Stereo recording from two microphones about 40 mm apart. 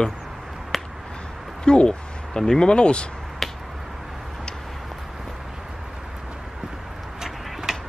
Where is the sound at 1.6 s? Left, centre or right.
Left.